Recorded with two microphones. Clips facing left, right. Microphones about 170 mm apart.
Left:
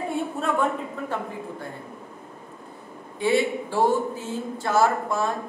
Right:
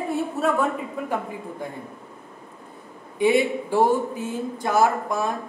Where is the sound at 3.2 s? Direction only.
20° right (ahead or behind).